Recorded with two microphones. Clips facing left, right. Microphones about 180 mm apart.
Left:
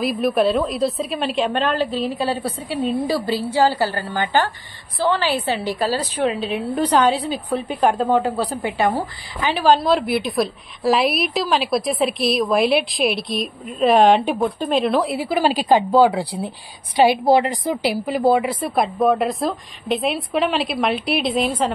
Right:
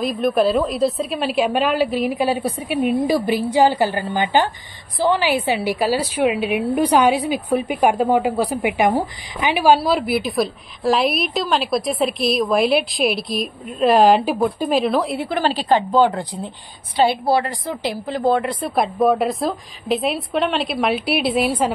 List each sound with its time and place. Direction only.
0.0 s a woman's voice: centre (ahead or behind)